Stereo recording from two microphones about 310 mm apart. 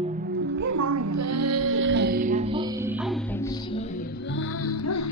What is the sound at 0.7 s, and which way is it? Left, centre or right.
Child singing, right.